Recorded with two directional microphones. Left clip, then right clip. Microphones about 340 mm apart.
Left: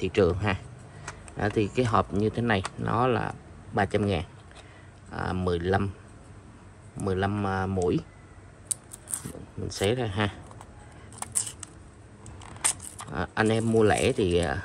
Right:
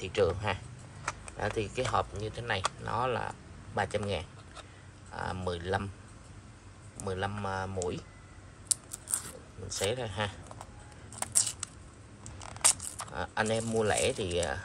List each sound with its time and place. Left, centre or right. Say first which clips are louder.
0.0 s speech: left 5 dB; left
7.1 s speech: left 6 dB; left
9.7 s speech: left 5 dB; left
12.6 s a sound: right 2 dB; centre
13.1 s speech: left 5 dB; left